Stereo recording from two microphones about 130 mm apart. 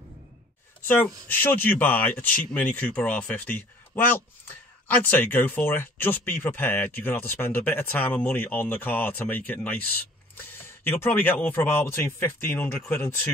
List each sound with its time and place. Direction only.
1.3 s speech: 15° left (ahead or behind)